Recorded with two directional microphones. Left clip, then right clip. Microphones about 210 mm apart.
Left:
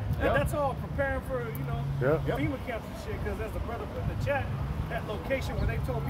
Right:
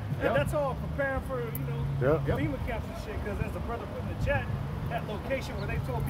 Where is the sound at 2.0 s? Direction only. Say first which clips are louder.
Even; 5° right (ahead or behind).